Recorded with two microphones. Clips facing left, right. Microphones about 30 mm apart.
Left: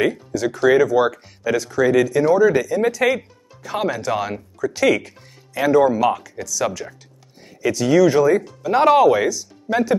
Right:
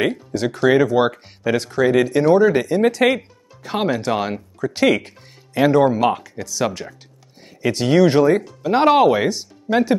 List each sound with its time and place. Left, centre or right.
0.0 s speech: right
1.6 s speech: right
3.6 s speech: right
6.8 s speech: centre
7.7 s speech: right
8.6 s speech: right